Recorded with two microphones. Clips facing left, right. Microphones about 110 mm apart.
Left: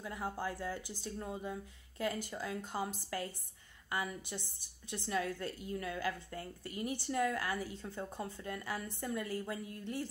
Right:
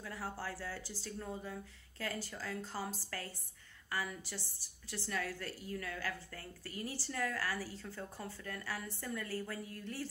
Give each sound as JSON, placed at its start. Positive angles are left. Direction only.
{"t": 0.0, "sound": "a woman's voice", "side_deg": 20}